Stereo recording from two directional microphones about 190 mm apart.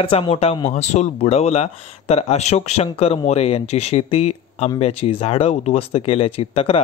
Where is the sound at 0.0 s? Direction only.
30° left (ahead or behind).